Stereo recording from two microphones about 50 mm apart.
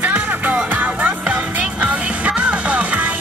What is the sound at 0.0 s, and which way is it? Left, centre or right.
Music, right.